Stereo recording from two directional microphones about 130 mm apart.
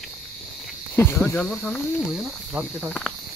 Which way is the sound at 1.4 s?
5° left (ahead or behind).